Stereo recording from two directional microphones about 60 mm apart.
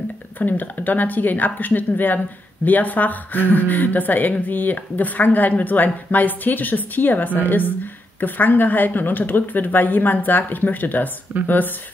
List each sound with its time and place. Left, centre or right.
0.4 s a woman's voice: left